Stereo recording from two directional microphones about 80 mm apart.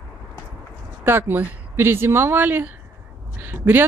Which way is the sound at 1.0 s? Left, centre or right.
Right.